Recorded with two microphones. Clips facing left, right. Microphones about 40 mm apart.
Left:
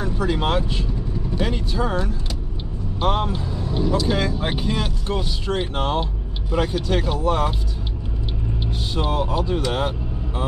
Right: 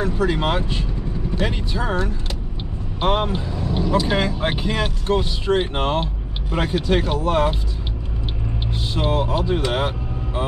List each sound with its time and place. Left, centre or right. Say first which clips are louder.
0.3 s speech: even; right
1.8 s speech: right 1 dB; centre
3.0 s speech: right 2 dB; right
5.0 s speech: right 5 dB; right
8.9 s speech: right 2 dB; right